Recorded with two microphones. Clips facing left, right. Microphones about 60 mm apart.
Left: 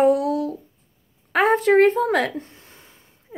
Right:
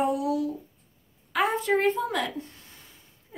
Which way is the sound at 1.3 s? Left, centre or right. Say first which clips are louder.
Left 7 dB; left.